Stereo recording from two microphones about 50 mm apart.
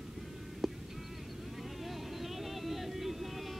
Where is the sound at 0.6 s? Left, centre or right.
Centre.